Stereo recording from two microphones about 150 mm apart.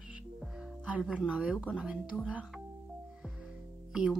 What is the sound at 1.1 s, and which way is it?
Speech, 5° right (ahead or behind).